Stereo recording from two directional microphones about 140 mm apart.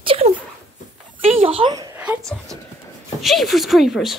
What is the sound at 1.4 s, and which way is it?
Speech, 40° right (ahead or behind).